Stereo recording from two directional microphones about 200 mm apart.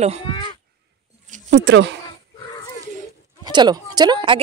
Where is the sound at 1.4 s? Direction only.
65° right (ahead or behind).